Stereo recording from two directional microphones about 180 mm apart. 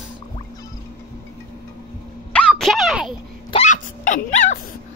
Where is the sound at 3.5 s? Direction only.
40° left (ahead or behind).